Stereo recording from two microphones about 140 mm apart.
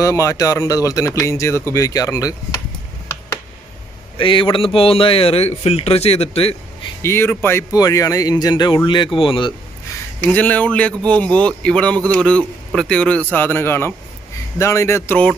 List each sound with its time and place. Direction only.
0.0 s speech: 25° left (ahead or behind)
4.2 s speech: 35° left (ahead or behind)
7.0 s speech: 15° left (ahead or behind); by 9.5 s 40° left (ahead or behind)
10.2 s speech: 10° left (ahead or behind)